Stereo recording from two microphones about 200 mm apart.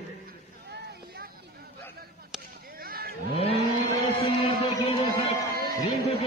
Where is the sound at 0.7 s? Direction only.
55° right (ahead or behind).